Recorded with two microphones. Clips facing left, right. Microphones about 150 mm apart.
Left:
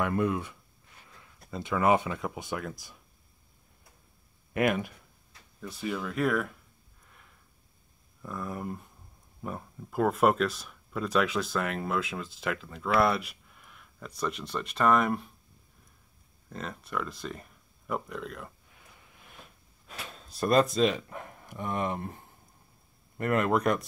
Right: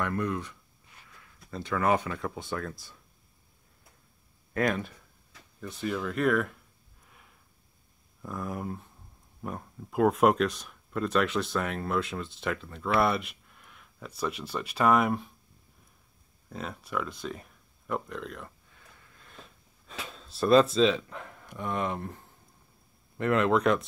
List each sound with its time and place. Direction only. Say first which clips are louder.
0.0 s speech: left 3 dB; 10° left (ahead or behind)
1.6 s speech: left 2 dB; 20° left (ahead or behind)
4.6 s speech: left 1 dB; 10° left (ahead or behind)
8.2 s speech: right 1 dB; centre (ahead or behind)
16.4 s speech: right 1 dB; 5° right (ahead or behind)
18.7 s a sound: even; 15° left (ahead or behind)
20.3 s speech: right 3 dB; 10° left (ahead or behind)
23.1 s speech: right 2 dB; 5° left (ahead or behind)